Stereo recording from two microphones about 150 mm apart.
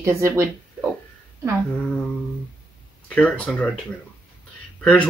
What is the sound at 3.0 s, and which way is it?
Speech, 10° left (ahead or behind).